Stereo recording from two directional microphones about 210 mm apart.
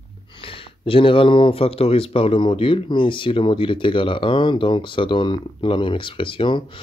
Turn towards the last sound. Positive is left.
turn(degrees=25)  # may be behind; listen again after turning